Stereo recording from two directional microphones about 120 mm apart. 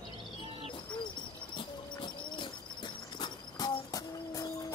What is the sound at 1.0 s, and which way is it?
Bird, 40° left (ahead or behind).